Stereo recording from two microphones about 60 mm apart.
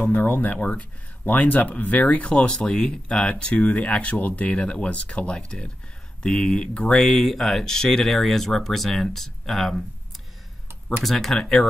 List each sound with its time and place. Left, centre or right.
0.0 s speech: left; by 9.8 s centre
11.1 s speech: centre